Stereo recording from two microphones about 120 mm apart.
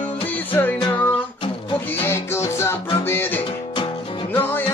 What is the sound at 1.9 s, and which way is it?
Music, 20° left (ahead or behind).